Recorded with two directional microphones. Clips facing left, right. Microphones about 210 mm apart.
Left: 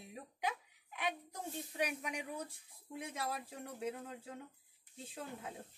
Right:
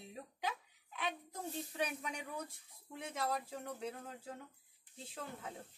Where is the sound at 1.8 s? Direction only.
10° left (ahead or behind).